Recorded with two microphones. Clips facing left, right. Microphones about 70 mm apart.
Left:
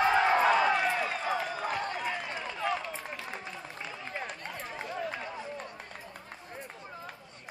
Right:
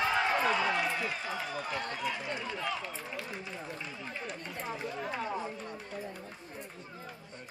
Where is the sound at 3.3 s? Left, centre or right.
Left.